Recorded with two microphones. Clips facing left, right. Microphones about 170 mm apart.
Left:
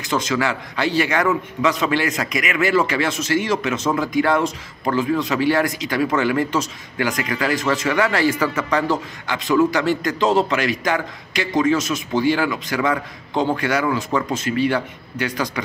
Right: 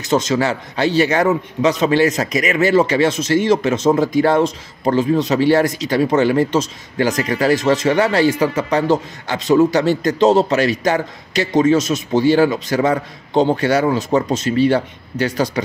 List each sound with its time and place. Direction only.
0.3 s speech: 35° right (ahead or behind)